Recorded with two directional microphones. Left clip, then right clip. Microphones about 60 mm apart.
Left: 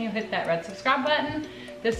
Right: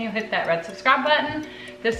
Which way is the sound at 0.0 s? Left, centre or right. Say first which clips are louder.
Right 4 dB; right.